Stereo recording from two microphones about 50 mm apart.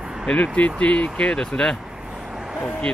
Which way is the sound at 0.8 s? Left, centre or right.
Left.